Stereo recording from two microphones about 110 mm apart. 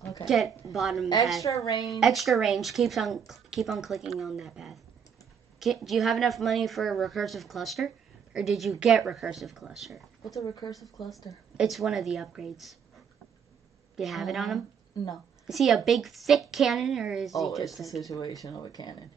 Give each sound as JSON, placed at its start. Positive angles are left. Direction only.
{"t": 0.2, "sound": "a woman's voice", "side_deg": -5}
{"t": 1.4, "sound": "speech", "side_deg": 30}
{"t": 1.8, "sound": "a woman's voice", "side_deg": 0}
{"t": 10.4, "sound": "speech", "side_deg": 40}
{"t": 10.7, "sound": "a woman's voice", "side_deg": 0}
{"t": 13.9, "sound": "a woman's voice", "side_deg": 0}
{"t": 18.4, "sound": "speech", "side_deg": 35}